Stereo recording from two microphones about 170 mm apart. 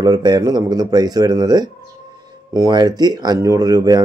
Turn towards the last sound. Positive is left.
turn(degrees=-20)  # may be behind; listen again after turning